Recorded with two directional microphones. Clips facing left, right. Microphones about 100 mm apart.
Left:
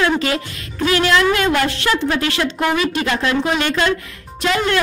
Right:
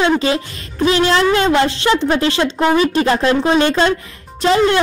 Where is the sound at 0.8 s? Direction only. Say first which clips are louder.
Right 2 dB; 30° right (ahead or behind).